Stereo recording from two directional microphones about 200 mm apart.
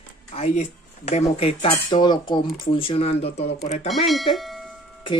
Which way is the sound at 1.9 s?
20° left (ahead or behind).